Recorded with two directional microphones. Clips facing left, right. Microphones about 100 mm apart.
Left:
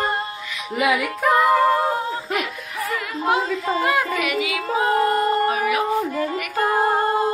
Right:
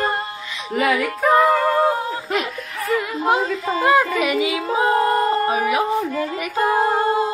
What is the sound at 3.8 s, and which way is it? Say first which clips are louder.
Yodeling: right 8 dB; 30° right (ahead or behind).